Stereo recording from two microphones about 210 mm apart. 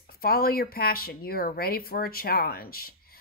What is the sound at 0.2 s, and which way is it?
Speech, 45° left (ahead or behind).